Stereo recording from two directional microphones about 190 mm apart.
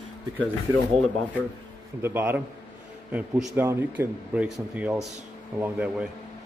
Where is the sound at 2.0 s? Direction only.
10° right (ahead or behind).